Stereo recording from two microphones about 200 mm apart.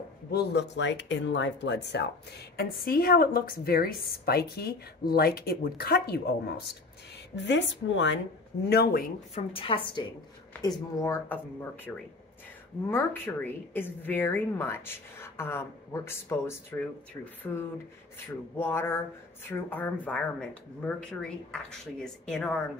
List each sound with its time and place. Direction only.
0.3 s speech: 60° left (ahead or behind)
7.3 s speech: 65° left (ahead or behind)
8.6 s speech: 50° left (ahead or behind)
9.3 s a woman's voice: 30° left (ahead or behind)
11.0 s speech: 10° left (ahead or behind)
12.9 s speech: 10° left (ahead or behind)
18.6 s speech: 10° left (ahead or behind)